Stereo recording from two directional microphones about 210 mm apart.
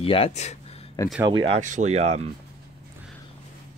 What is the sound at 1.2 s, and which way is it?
Speech, 25° right (ahead or behind).